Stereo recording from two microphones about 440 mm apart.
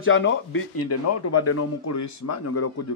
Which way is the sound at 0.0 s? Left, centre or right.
Left.